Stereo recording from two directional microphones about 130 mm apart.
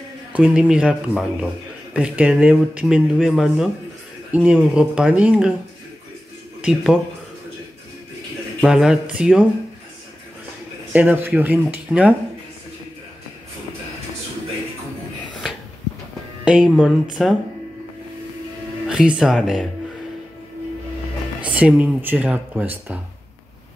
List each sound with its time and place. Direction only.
0.3 s speech: 10° right (ahead or behind)
6.6 s speech: 5° right (ahead or behind)
8.6 s speech: 5° right (ahead or behind)
10.9 s speech: 10° right (ahead or behind)
16.4 s speech: 5° right (ahead or behind)
18.9 s speech: 5° right (ahead or behind)
21.5 s speech: 10° right (ahead or behind)